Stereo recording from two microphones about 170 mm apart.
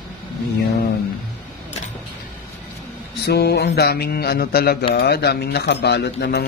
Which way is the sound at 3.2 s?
75° left (ahead or behind).